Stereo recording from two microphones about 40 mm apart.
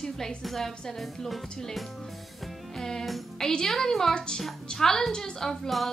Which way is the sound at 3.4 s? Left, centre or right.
Centre.